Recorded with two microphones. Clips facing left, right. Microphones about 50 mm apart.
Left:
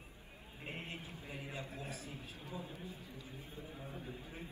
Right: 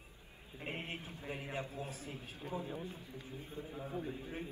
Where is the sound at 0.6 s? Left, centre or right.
Right.